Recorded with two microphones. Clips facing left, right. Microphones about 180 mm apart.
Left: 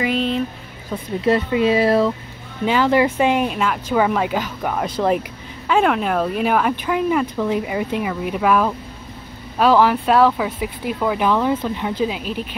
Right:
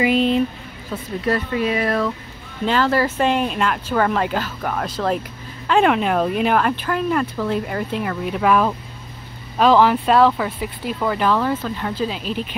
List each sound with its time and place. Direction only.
0.0 s speech: 5° right (ahead or behind)
1.2 s speech: 25° left (ahead or behind)
2.6 s speech: 15° left (ahead or behind)
5.7 s speech: centre (ahead or behind)